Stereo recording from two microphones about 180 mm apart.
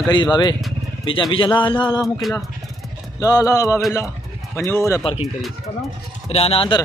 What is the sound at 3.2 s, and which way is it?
Speech, 20° left (ahead or behind).